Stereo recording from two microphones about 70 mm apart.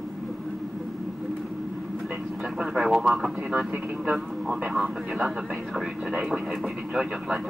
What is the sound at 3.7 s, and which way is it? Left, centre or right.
Speech, centre.